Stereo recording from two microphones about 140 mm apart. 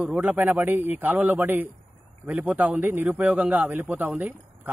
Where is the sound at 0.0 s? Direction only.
10° right (ahead or behind).